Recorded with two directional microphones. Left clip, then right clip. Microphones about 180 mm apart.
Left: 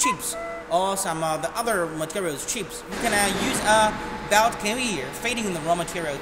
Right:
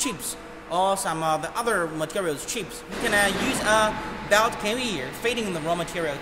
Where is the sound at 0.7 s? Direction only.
15° right (ahead or behind).